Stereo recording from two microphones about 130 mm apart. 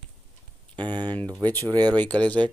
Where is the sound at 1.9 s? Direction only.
10° left (ahead or behind).